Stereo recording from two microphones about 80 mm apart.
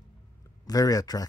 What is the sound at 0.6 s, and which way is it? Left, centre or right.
Speech, left.